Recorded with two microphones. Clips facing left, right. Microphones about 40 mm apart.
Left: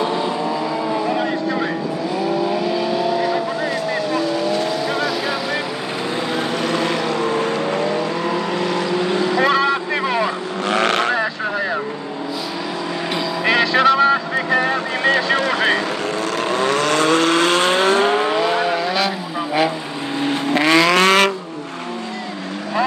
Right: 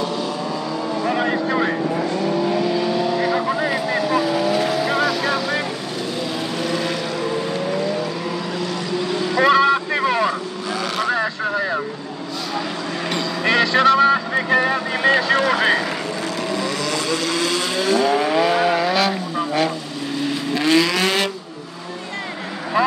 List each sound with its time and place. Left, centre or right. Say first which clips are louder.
1.1 s vehicle: even; centre
2.1 s vehicle: left 3 dB; centre
6.6 s vehicle: left 1 dB; left
9.4 s boat: right 5 dB; centre
10.7 s vehicle: left 5 dB; left
11.1 s vehicle: even; centre
13.1 s vehicle: left 1 dB; centre
16.5 s vehicle: left 8 dB; left
18.3 s vehicle: right 1 dB; centre
20.2 s vehicle: left 4 dB; left
20.6 s vehicle: left 3 dB; left